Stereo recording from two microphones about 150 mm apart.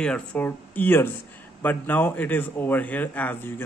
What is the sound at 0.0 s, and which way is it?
A man's voice, 5° left (ahead or behind).